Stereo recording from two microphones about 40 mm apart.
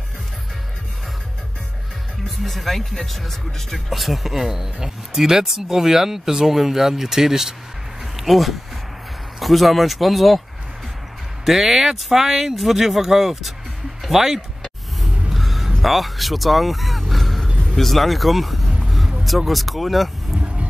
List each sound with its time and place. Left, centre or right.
2.4 s speech: centre
8.2 s speech: centre
11.4 s speech: centre
14.0 s a sound: centre
15.3 s music: centre
15.8 s speech: centre
18.8 s vehicle: centre
19.2 s speech: centre
20.3 s vehicle: right